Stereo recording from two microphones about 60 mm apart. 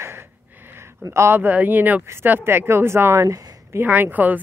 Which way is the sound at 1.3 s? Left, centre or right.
Right.